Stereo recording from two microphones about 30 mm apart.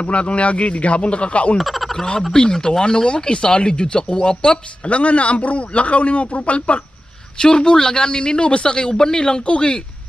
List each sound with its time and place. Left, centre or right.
0.0 s a man's voice: left
1.6 s fowl: centre
2.3 s a man's voice: left
4.8 s a man's voice: left
7.3 s a man's voice: left